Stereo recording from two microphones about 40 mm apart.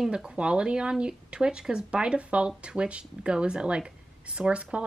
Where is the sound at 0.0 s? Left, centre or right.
Centre.